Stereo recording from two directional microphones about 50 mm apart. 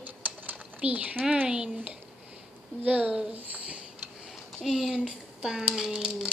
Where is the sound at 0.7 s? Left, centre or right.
Right; by 6.2 s centre.